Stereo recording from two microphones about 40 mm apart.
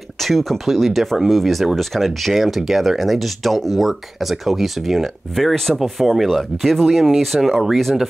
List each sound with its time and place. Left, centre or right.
0.2 s speech: centre